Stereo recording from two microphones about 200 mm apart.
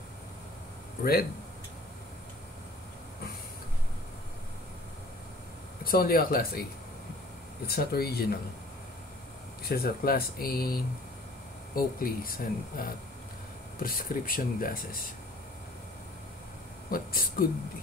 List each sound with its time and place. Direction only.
5.9 s speech: 45° left (ahead or behind)
7.6 s speech: 50° left (ahead or behind)
9.6 s speech: 50° left (ahead or behind)
16.9 s speech: 45° left (ahead or behind)